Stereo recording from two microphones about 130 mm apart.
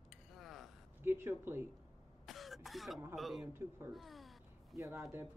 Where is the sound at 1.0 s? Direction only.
15° right (ahead or behind).